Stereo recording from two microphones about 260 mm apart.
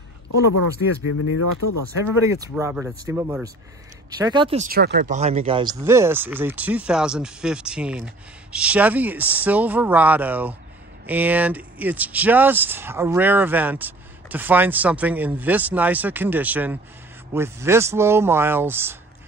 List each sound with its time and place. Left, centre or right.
0.3 s a man's voice: left
2.0 s speech: centre
4.6 s speech: right; by 18.9 s centre